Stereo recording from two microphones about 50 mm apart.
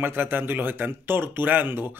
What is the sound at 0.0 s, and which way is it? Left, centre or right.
Speech, right.